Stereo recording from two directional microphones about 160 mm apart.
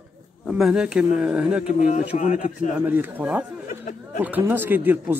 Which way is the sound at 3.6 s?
50° left (ahead or behind).